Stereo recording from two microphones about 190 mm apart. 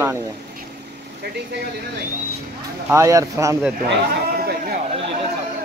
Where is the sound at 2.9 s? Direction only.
15° right (ahead or behind).